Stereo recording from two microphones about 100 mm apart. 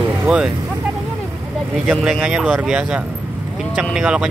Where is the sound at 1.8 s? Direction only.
5° right (ahead or behind).